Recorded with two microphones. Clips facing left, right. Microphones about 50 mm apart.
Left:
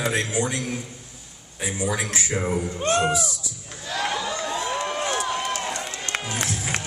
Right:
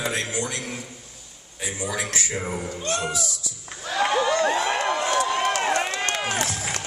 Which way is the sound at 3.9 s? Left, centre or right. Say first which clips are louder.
Right 4 dB; right.